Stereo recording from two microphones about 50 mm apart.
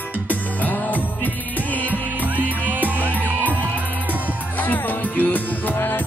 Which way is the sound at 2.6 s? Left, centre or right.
Right.